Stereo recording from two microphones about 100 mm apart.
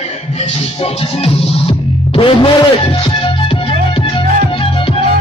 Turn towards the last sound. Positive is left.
turn(degrees=55)  # may be behind; listen again after turning